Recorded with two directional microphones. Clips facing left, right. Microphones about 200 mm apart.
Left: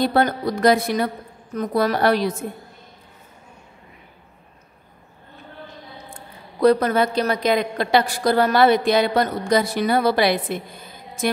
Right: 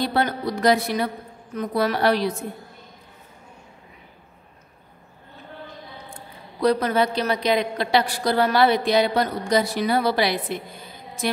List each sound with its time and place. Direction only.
0.0 s a woman's voice: 45° left (ahead or behind)
6.6 s a woman's voice: 50° left (ahead or behind)